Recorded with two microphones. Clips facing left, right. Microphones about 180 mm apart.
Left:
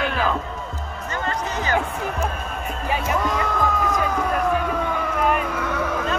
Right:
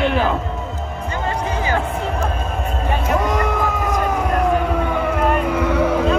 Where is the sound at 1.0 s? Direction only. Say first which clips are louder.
Right 3 dB; 10° right (ahead or behind).